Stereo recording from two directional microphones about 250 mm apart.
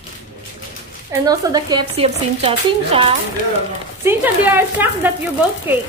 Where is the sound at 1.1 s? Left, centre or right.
Centre.